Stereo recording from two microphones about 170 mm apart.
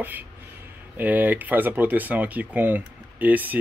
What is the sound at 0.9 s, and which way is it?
Speech, 10° right (ahead or behind).